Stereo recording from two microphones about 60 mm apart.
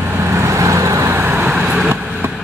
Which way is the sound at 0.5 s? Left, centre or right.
Right.